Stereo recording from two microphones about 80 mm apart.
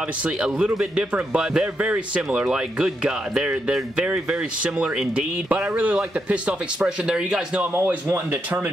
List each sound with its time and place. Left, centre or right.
0.2 s speech: centre
7.7 s speech: right